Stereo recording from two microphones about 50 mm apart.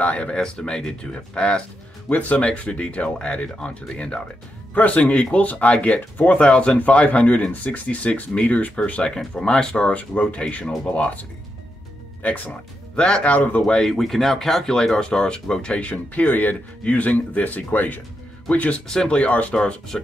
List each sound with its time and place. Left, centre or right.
0.0 s speech: left
2.0 s speech: left
12.4 s speech: centre
13.3 s speech: left
13.8 s speech: centre; by 18.8 s left
18.9 s speech: centre